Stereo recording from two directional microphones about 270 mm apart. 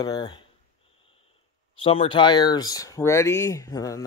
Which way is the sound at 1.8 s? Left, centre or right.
Left.